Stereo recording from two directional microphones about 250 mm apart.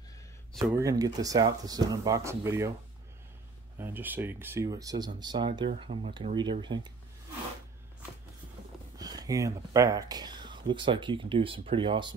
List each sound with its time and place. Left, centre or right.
0.5 s a sound: centre
0.7 s speech: centre
3.7 s speech: centre
8.9 s speech: centre